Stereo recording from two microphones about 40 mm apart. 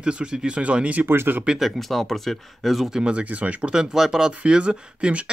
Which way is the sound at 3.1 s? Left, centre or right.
Right.